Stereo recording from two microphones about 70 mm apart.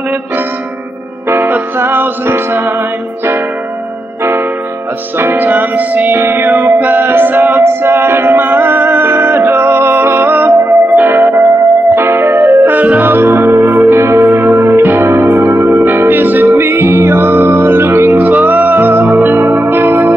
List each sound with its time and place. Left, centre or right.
1.3 s music: right
5.2 s music: right